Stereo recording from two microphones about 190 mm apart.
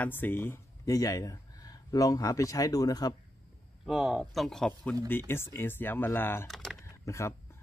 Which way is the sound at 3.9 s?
Centre (ahead or behind).